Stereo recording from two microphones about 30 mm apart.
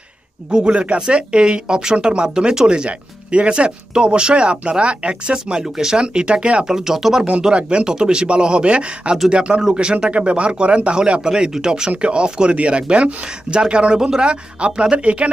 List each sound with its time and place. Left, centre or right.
0.5 s speech: right
5.6 s speech: centre
5.9 s speech: right
6.6 s speech: centre
7.8 s speech: right
11.1 s speech: right
12.0 s speech: right